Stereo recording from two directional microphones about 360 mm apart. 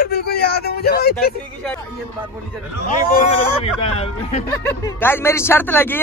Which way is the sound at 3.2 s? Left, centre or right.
Centre.